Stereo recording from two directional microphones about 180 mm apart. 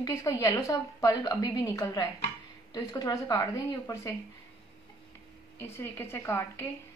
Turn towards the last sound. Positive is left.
turn(degrees=15)  # may be behind; listen again after turning